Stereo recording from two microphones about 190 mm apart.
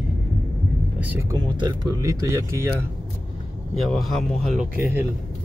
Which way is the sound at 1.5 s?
20° right (ahead or behind).